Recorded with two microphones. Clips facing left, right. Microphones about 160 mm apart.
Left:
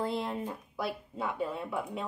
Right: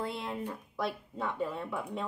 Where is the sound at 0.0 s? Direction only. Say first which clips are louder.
Left 4 dB; 35° left (ahead or behind).